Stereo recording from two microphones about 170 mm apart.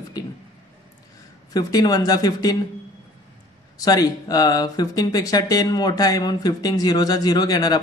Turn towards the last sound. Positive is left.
turn(degrees=25)  # may be behind; listen again after turning